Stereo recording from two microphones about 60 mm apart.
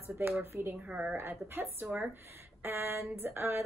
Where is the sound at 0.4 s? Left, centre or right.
Right.